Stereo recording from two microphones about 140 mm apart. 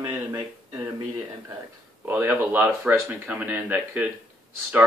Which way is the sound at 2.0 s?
15° right (ahead or behind).